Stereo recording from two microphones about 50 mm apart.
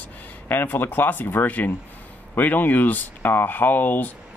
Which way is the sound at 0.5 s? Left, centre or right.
Left.